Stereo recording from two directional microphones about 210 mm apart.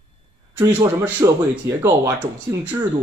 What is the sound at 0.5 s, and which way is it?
Speech, 15° right (ahead or behind).